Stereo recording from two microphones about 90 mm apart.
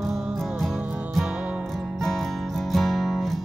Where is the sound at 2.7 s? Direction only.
Centre (ahead or behind).